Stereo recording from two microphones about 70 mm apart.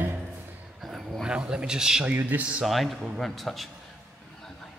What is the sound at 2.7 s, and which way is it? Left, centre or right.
A man's voice, centre.